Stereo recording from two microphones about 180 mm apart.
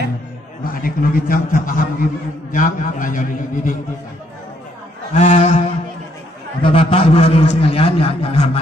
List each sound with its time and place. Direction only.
0.7 s a man's voice: 50° left (ahead or behind)
5.1 s a man's voice: 35° left (ahead or behind)
6.6 s a man's voice: 30° left (ahead or behind)